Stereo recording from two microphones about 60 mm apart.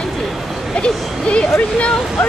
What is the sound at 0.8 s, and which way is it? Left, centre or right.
Speech, centre.